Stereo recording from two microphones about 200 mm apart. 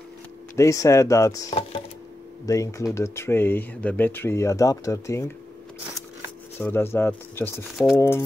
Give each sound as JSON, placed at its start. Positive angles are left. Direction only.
{"t": 0.6, "sound": "speech", "side_deg": 15}
{"t": 6.6, "sound": "speech", "side_deg": 10}
{"t": 7.7, "sound": "speech", "side_deg": 0}